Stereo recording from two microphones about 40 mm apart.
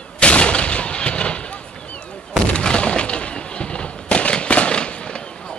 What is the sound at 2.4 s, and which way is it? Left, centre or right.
Breaking, left.